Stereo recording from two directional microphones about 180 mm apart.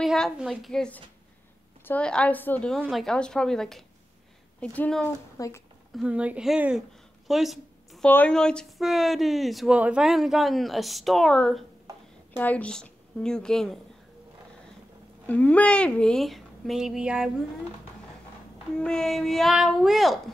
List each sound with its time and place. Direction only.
0.0 s a woman's voice: centre (ahead or behind)
5.4 s a woman's voice: 20° left (ahead or behind)
5.9 s speech: 5° right (ahead or behind)
7.2 s a sound: centre (ahead or behind)
8.1 s speech: 5° left (ahead or behind)
15.2 s speech: 10° left (ahead or behind)
18.8 s speech: 5° left (ahead or behind)